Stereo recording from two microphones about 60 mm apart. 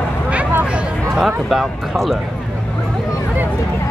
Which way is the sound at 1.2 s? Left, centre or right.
Centre.